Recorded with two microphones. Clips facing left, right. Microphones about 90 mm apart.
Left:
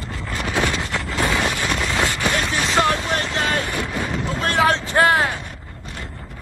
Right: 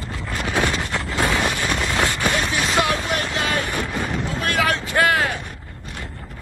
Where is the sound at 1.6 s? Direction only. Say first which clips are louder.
Even; 10° right (ahead or behind).